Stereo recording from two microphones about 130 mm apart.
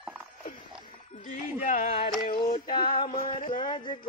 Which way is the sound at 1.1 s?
80° left.